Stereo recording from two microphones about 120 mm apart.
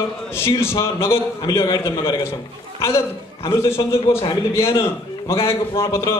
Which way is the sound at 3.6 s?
20° left (ahead or behind).